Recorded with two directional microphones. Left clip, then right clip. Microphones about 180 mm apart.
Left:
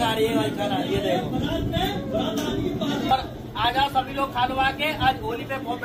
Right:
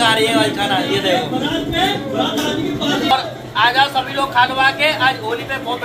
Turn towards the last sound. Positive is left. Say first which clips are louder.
# right 8 dB
turn(degrees=-5)  # may be behind; listen again after turning